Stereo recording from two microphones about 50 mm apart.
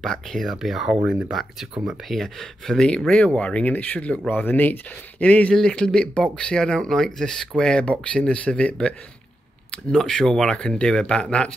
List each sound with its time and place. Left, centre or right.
0.0 s speech: centre
0.5 s speech: centre
2.6 s speech: centre
4.3 s speech: left
5.2 s speech: left
5.8 s speech: centre
9.9 s speech: centre
10.5 s speech: centre